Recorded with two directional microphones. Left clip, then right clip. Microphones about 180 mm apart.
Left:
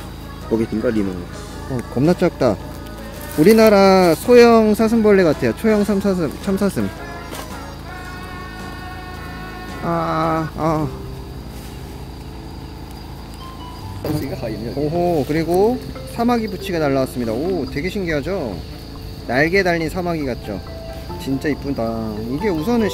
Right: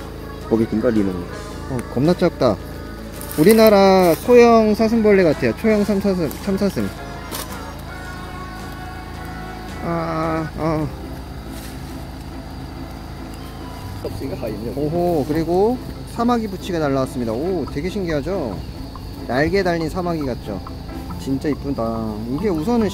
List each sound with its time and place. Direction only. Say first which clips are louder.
0.5 s speech: right 1 dB; centre (ahead or behind)
2.0 s speech: left 1 dB; 15° left (ahead or behind)
6.5 s speech: left 2 dB; 15° left (ahead or behind)
9.8 s speech: left 3 dB; 15° left (ahead or behind)
15.0 s speech: left 1 dB; 10° left (ahead or behind)
21.4 s speech: left 1 dB; 10° left (ahead or behind)